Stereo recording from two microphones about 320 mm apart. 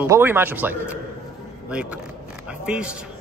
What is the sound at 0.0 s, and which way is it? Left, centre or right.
A man's voice, centre.